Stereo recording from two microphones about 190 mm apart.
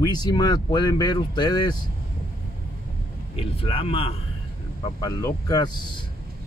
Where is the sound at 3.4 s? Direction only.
30° left (ahead or behind).